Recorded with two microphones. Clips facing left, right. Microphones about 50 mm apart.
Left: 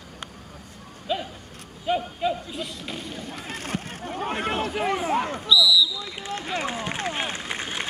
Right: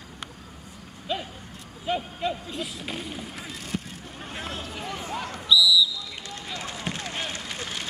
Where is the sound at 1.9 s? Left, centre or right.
Centre.